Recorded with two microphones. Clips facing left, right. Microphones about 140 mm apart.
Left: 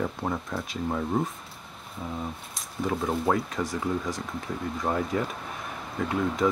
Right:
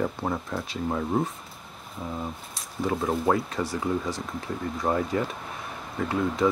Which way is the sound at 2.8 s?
Centre (ahead or behind).